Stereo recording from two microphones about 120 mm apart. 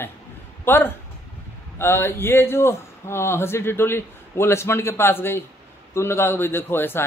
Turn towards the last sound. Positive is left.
turn(degrees=20)  # may be behind; listen again after turning